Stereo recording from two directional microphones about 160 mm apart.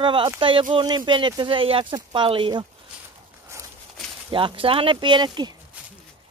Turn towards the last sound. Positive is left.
turn(degrees=-30)  # may be behind; listen again after turning